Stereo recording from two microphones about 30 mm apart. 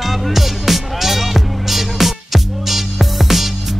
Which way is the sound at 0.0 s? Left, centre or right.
Centre.